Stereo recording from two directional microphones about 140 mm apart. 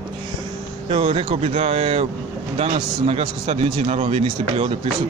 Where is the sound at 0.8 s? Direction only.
40° right (ahead or behind).